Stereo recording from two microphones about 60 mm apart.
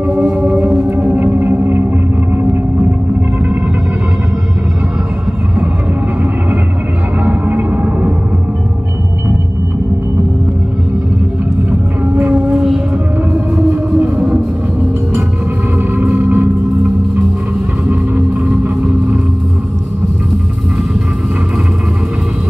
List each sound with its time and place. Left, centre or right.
0.3 s music: right
7.2 s music: right
13.3 s music: right
16.0 s music: right